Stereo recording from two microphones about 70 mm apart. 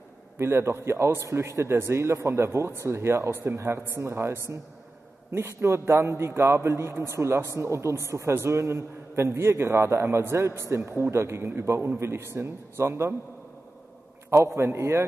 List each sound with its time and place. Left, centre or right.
0.4 s a man's voice: right
14.4 s a man's voice: right